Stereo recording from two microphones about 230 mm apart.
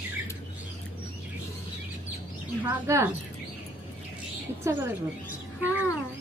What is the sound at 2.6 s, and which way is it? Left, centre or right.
Speech, centre.